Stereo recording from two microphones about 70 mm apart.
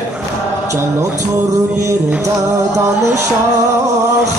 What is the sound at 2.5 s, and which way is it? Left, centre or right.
Music, right.